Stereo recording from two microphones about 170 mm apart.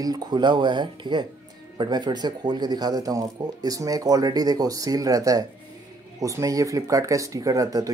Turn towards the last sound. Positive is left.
turn(degrees=-20)  # may be behind; listen again after turning